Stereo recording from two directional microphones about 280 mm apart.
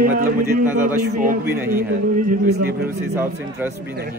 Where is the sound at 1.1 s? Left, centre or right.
Right.